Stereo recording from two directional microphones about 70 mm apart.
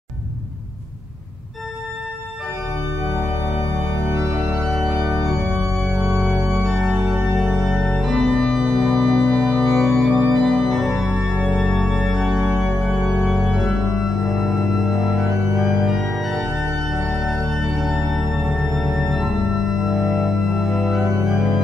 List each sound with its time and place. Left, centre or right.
4.5 s organ: centre
5.4 s organ: right
5.8 s organ: centre